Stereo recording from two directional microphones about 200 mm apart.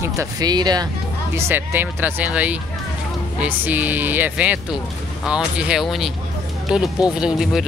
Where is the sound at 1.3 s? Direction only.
10° right (ahead or behind).